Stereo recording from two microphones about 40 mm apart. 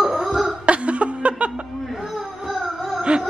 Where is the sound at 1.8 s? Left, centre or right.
Centre.